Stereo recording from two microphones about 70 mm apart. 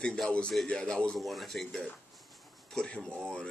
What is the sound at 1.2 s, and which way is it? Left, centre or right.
Speech, centre.